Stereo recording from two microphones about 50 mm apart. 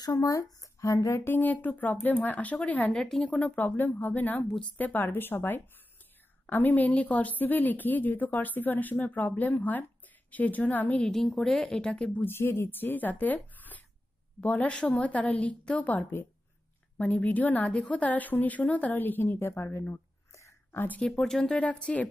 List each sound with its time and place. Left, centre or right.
0.1 s speech: left
1.2 s speech: left
2.9 s speech: centre
3.3 s a woman's voice: left
3.5 s speech: left
6.4 s speech: left
11.3 s speech: centre
12.3 s speech: left
12.7 s a woman's voice: left
19.5 s speech: left
20.7 s speech: left
21.4 s a woman's voice: centre